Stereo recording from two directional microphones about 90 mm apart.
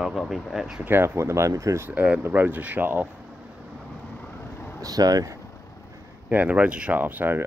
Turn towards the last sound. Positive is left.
turn(degrees=-25)  # may be behind; listen again after turning